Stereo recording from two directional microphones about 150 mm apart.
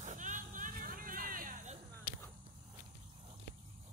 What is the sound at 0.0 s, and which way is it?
Hubbub, 55° right (ahead or behind).